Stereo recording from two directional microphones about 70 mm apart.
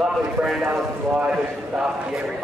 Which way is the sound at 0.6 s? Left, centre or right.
Right.